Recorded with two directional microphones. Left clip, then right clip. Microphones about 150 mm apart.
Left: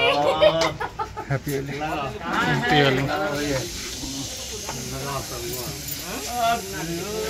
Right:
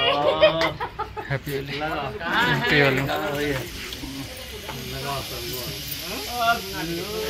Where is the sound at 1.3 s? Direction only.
50° left (ahead or behind).